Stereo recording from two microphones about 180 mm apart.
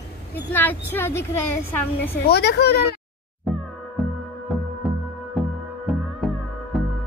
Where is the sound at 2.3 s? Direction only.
65° left (ahead or behind).